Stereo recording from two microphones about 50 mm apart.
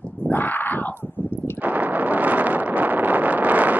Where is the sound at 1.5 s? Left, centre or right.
Right.